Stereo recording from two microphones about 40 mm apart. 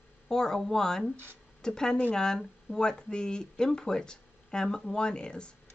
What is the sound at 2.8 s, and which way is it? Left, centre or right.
Speech, left.